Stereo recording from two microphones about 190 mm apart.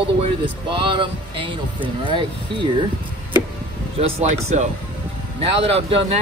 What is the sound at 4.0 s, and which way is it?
Speech, 30° right (ahead or behind).